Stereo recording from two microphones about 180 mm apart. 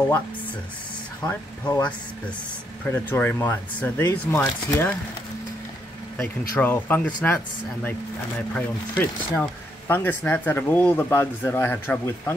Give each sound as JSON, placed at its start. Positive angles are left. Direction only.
{"t": 1.2, "sound": "speech", "side_deg": 20}
{"t": 2.8, "sound": "speech", "side_deg": 10}
{"t": 6.1, "sound": "speech", "side_deg": 10}